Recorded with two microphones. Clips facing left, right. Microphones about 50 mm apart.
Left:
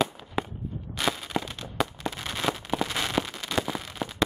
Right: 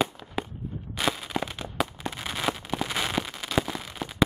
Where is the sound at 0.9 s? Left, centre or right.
Centre.